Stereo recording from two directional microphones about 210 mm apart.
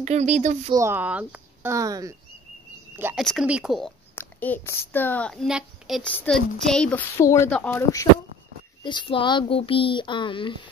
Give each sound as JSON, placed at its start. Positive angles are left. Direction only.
{"t": 0.0, "sound": "speech", "side_deg": -35}
{"t": 0.7, "sound": "speech", "side_deg": -15}
{"t": 4.1, "sound": "a woman's voice", "side_deg": 10}
{"t": 8.8, "sound": "speech", "side_deg": 25}